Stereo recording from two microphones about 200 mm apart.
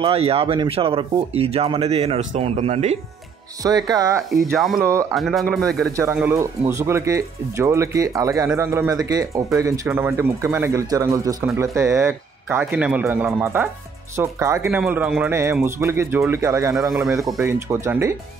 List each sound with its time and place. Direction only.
0.0 s speech: 30° right (ahead or behind)
3.6 s speech: 20° right (ahead or behind)
4.3 s speech: centre (ahead or behind)
5.9 s speech: 10° right (ahead or behind)